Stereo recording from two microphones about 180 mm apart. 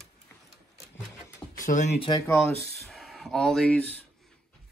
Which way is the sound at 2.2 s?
5° left (ahead or behind).